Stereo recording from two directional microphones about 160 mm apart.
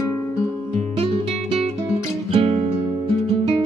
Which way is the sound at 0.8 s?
40° right (ahead or behind).